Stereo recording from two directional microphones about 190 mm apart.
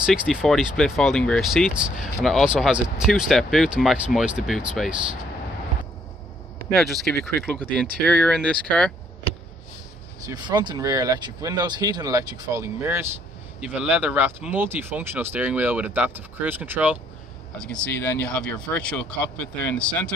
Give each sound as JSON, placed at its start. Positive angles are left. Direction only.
{"t": 0.0, "sound": "speech", "side_deg": -5}
{"t": 6.7, "sound": "speech", "side_deg": 0}
{"t": 10.2, "sound": "speech", "side_deg": -20}
{"t": 17.6, "sound": "speech", "side_deg": 10}